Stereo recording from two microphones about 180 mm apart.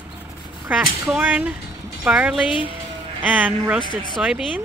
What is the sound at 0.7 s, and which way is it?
Speech, 10° right (ahead or behind).